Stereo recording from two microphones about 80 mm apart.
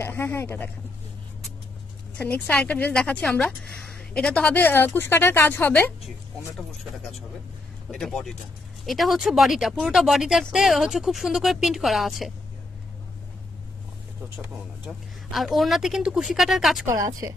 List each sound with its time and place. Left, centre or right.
0.0 s speech: left
2.1 s speech: left
4.6 s speech: left
6.5 s a woman's voice: centre
15.3 s a woman's voice: centre
17.2 s a woman's voice: right